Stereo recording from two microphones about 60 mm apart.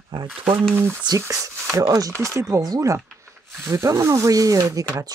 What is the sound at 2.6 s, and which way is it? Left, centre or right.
Speech, right.